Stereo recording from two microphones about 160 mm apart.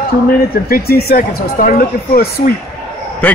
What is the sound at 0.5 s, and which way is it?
Speech, 70° left (ahead or behind).